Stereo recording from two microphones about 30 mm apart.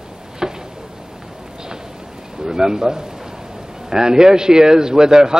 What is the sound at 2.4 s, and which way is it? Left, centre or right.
Speech, right.